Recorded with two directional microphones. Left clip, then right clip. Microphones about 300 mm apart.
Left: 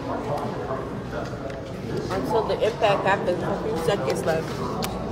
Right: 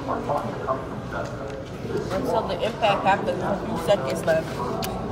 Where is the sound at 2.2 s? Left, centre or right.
Left.